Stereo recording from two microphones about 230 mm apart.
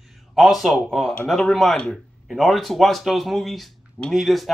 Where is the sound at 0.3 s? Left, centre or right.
Centre.